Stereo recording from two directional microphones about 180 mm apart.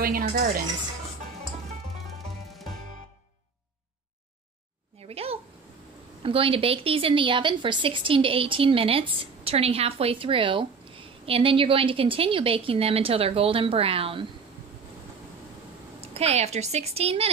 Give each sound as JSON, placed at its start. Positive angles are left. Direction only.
{"t": 0.0, "sound": "speech", "side_deg": -55}
{"t": 5.0, "sound": "a sound", "side_deg": -35}
{"t": 6.2, "sound": "a woman's voice", "side_deg": -30}
{"t": 16.0, "sound": "a woman's voice", "side_deg": -35}